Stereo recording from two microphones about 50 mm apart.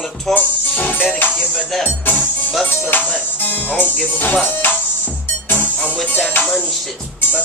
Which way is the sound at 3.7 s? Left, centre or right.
Left.